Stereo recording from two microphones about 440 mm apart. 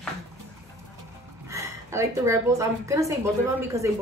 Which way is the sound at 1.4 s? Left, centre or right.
Centre.